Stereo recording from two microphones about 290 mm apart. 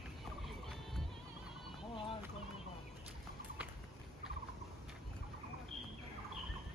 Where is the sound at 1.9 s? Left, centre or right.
Centre.